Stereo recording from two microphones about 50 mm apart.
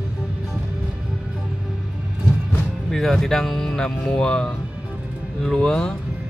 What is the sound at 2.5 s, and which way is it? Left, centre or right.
Speech, centre.